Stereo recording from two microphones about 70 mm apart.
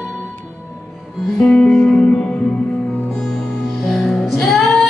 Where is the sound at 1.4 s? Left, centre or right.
Left.